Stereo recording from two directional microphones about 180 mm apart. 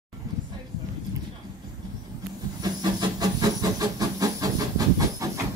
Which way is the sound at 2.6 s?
20° right (ahead or behind).